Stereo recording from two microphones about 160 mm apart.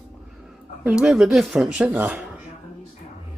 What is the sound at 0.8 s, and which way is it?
Speech, 5° right (ahead or behind).